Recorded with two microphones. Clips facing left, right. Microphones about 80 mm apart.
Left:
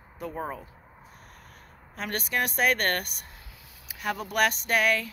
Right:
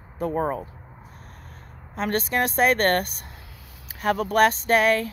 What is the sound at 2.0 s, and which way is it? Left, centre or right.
Speech, right.